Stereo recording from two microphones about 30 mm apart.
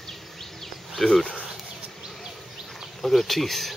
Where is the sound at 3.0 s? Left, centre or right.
Centre.